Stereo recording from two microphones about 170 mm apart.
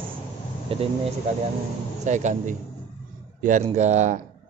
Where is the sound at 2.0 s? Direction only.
45° right (ahead or behind).